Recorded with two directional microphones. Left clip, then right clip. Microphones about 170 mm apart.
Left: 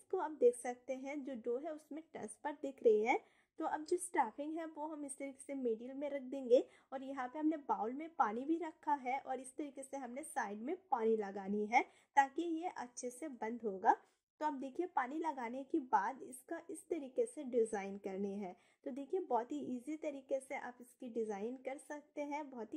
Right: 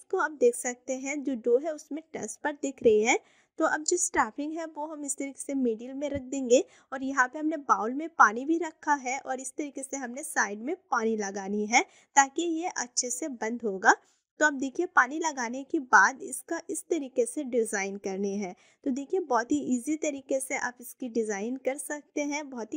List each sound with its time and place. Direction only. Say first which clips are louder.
0.1 s a woman's voice: right 9 dB; 40° right (ahead or behind)